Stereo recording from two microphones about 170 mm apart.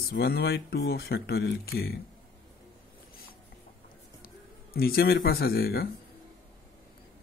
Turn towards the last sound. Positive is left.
turn(degrees=65)  # may be behind; listen again after turning